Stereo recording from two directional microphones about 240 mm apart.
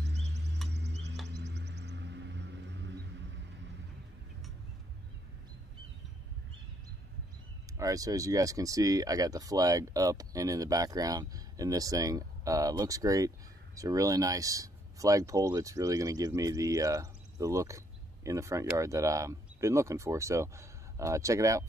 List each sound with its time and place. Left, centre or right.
0.0 s a sound: right
0.7 s music: right
7.7 s speech: centre